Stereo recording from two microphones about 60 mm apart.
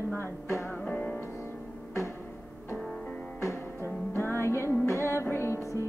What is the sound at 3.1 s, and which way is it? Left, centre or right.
Music, left.